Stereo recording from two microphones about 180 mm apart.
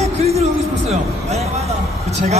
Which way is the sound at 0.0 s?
35° right (ahead or behind).